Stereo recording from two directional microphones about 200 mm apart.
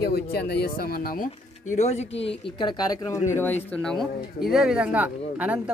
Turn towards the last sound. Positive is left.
turn(degrees=-5)  # may be behind; listen again after turning